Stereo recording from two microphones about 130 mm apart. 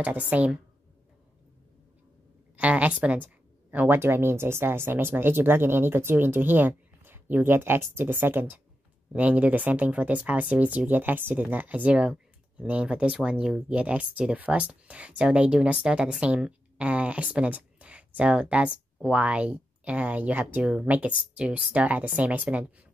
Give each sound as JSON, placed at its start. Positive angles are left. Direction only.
{"t": 0.0, "sound": "speech", "side_deg": -10}
{"t": 2.5, "sound": "speech", "side_deg": -10}